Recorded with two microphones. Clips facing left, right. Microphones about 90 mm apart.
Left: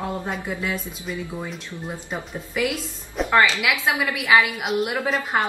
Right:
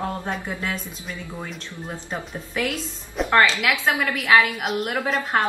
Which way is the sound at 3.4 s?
20° left (ahead or behind).